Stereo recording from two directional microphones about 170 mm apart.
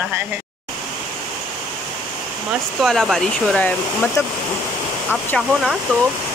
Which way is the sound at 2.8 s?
Centre (ahead or behind).